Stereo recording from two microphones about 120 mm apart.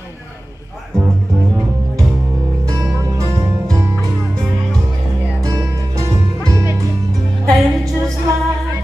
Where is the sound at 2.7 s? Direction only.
30° right (ahead or behind).